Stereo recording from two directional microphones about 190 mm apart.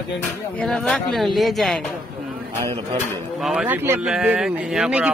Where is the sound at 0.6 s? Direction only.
Centre (ahead or behind).